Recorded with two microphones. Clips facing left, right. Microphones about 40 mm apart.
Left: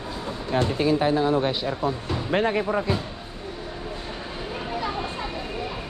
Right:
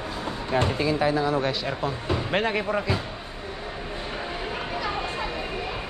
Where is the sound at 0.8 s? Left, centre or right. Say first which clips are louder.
Left 2 dB; centre.